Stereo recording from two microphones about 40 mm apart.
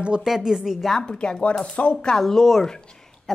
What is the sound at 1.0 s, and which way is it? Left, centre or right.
Speech, left.